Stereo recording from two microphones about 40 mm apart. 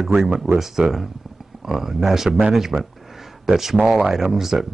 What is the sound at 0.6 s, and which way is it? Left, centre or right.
Speech, centre.